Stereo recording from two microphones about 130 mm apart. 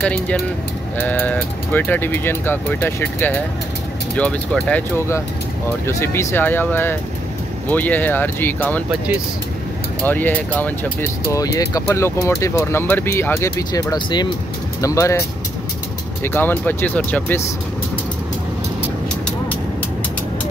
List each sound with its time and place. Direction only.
0.0 s speech: 10° left (ahead or behind)
4.9 s speech: 20° left (ahead or behind)
10.0 s speech: 15° left (ahead or behind)
11.4 s speech: 25° left (ahead or behind)
13.9 s speech: 35° left (ahead or behind)
14.8 s speech: 25° left (ahead or behind)
16.3 s speech: 15° left (ahead or behind)